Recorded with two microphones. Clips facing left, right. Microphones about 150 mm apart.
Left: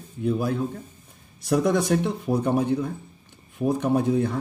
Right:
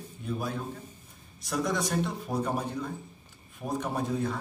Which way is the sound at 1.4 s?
60° left (ahead or behind).